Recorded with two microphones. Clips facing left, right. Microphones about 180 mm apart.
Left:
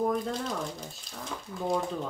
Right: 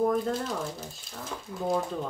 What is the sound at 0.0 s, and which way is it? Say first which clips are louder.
Speech: right 3 dB; centre (ahead or behind).